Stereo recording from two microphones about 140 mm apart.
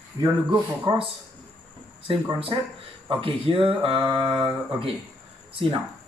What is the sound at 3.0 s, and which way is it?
Speech, 40° right (ahead or behind).